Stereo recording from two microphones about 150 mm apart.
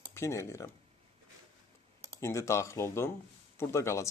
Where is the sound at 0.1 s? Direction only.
20° left (ahead or behind).